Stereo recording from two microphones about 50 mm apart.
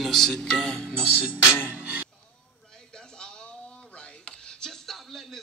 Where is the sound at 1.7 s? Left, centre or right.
Right.